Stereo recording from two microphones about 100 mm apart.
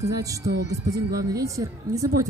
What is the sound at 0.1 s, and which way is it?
A woman's voice, 35° right (ahead or behind).